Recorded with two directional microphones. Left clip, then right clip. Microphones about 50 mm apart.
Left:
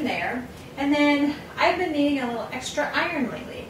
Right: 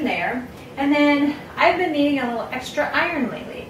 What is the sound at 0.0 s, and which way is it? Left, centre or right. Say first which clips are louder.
A woman's voice: right 4 dB; centre.